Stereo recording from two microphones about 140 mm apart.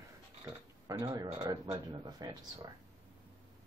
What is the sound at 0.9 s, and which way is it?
Speech, 30° right (ahead or behind).